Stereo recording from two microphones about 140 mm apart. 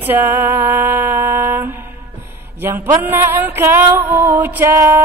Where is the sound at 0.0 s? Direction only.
15° right (ahead or behind).